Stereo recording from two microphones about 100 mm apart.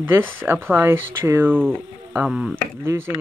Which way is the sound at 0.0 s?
20° right (ahead or behind).